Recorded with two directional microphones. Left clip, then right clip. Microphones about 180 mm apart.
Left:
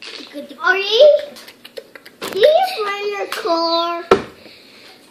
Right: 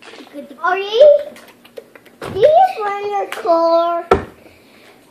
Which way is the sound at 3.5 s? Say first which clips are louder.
Right 5 dB; 35° left (ahead or behind).